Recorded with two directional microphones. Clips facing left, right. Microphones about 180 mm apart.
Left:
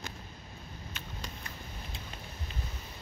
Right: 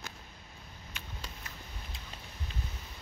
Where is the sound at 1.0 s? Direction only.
10° right (ahead or behind).